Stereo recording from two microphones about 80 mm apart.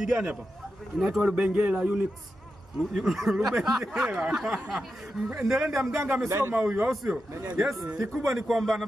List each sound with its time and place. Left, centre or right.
0.0 s a man's voice: centre
1.2 s a man's voice: centre
6.2 s a man's voice: right
6.6 s a man's voice: centre